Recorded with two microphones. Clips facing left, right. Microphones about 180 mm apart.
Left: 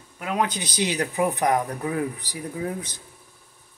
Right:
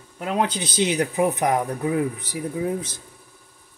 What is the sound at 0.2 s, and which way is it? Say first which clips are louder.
Speech: right 2 dB; 30° right (ahead or behind).